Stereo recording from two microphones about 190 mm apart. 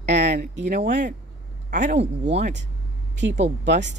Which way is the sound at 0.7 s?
40° right (ahead or behind).